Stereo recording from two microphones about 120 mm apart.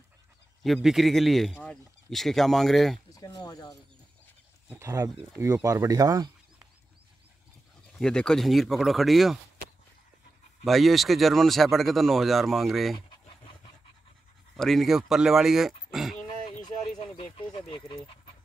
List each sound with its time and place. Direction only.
0.8 s speech: centre (ahead or behind)
3.1 s a sound: 30° left (ahead or behind)
3.4 s speech: 30° left (ahead or behind)
4.6 s speech: 20° right (ahead or behind)
8.0 s speech: 5° left (ahead or behind)
10.6 s speech: centre (ahead or behind)
14.6 s speech: centre (ahead or behind)
17.0 s speech: 50° left (ahead or behind)